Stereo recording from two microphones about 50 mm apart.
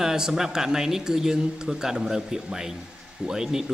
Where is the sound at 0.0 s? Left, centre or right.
Centre.